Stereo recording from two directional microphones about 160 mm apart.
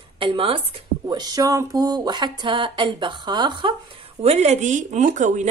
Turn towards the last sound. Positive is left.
turn(degrees=-50)  # may be behind; listen again after turning